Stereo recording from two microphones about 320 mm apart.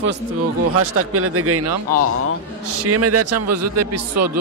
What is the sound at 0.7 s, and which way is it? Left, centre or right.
Speech, right.